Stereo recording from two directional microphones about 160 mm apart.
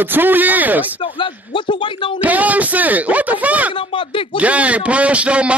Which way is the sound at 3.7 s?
30° left (ahead or behind).